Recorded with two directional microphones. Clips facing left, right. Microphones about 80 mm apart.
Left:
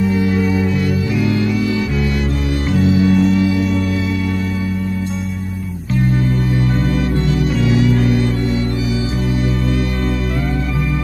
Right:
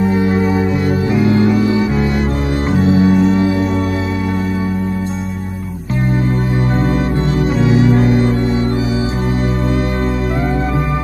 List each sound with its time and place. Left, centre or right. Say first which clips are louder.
0.0 s music: right 2 dB; right
7.2 s music: right 2 dB; right